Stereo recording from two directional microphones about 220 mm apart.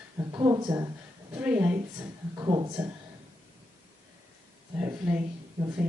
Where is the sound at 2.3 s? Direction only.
15° right (ahead or behind).